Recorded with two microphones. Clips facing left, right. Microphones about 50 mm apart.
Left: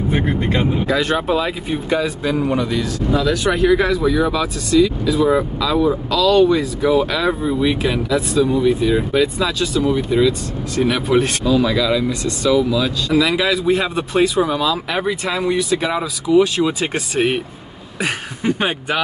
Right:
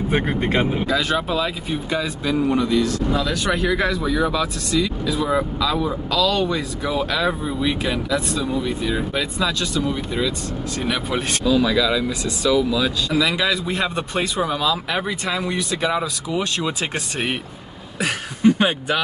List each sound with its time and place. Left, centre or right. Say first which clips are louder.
0.1 s speech: even; centre
0.8 s speech: left 3 dB; centre
17.9 s a sound: left 2 dB; left